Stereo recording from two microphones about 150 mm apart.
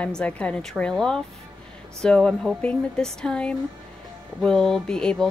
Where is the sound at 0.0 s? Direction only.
5° left (ahead or behind).